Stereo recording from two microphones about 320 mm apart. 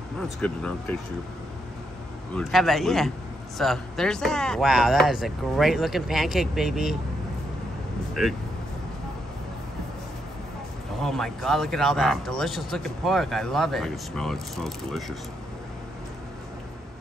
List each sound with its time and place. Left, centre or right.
0.4 s speech: centre
2.3 s speech: centre
8.1 s speech: centre
11.0 s speech: centre